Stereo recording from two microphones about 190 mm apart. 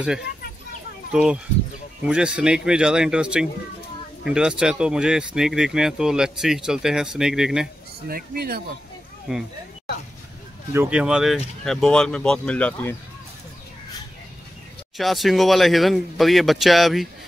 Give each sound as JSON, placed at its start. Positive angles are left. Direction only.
{"t": 1.1, "sound": "speech", "side_deg": -5}
{"t": 8.1, "sound": "speech", "side_deg": -55}
{"t": 9.3, "sound": "speech", "side_deg": -5}
{"t": 10.7, "sound": "speech", "side_deg": -10}
{"t": 15.0, "sound": "speech", "side_deg": 0}